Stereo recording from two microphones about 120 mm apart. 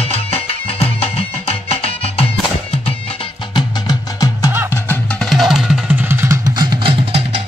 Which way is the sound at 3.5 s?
30° left (ahead or behind).